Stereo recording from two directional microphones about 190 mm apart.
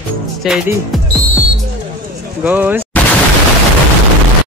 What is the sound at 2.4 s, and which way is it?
Speech, 10° right (ahead or behind).